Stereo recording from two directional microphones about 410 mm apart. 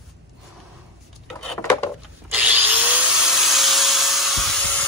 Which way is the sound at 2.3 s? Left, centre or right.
Centre.